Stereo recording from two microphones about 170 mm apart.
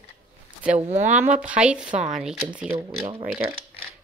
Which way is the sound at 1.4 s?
5° right (ahead or behind).